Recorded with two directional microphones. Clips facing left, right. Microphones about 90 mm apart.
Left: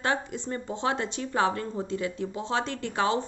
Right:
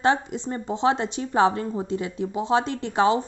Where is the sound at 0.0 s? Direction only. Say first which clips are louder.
Right 7 dB; 25° right (ahead or behind).